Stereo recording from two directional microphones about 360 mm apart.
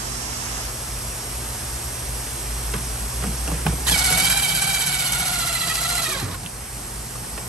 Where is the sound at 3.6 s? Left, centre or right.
Centre.